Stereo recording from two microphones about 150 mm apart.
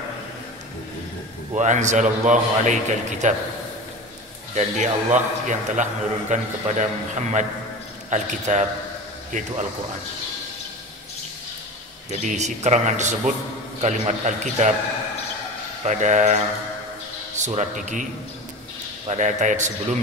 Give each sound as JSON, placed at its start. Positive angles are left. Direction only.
{"t": 1.5, "sound": "a man's voice", "side_deg": -50}
{"t": 4.6, "sound": "a man's voice", "side_deg": -55}
{"t": 12.1, "sound": "a man's voice", "side_deg": -55}
{"t": 15.8, "sound": "a man's voice", "side_deg": -50}
{"t": 17.6, "sound": "a man's voice", "side_deg": -55}
{"t": 19.0, "sound": "a man's voice", "side_deg": -50}